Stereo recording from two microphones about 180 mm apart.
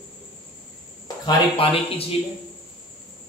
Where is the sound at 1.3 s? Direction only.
30° left (ahead or behind).